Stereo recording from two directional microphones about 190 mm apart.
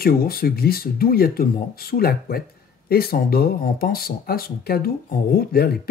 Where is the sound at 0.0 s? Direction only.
50° left (ahead or behind).